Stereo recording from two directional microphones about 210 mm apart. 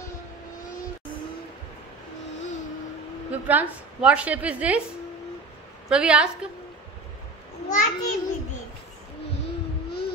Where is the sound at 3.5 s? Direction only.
5° right (ahead or behind).